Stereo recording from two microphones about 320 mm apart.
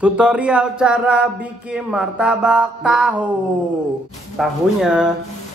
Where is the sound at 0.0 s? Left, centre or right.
Centre.